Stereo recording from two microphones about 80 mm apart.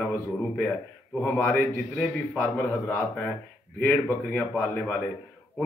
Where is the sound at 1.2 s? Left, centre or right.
Left.